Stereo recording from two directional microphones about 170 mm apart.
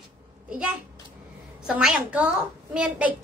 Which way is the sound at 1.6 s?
5° right (ahead or behind).